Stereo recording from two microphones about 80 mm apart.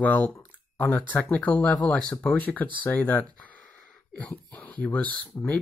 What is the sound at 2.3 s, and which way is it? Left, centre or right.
Speech, centre.